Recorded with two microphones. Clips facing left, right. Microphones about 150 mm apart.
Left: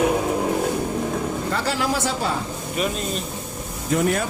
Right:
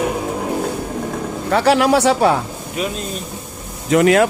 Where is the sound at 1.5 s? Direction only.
70° right (ahead or behind).